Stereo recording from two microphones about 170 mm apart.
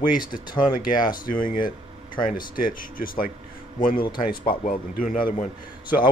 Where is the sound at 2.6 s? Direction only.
55° left (ahead or behind).